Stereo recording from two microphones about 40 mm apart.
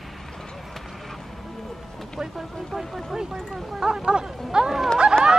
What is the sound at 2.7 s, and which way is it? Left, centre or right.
Speech, centre.